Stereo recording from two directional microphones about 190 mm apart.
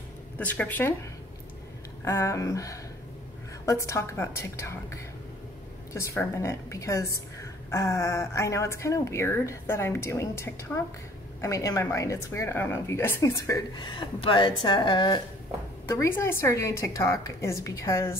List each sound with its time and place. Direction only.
0.4 s speech: 10° left (ahead or behind)
2.0 s speech: 15° left (ahead or behind)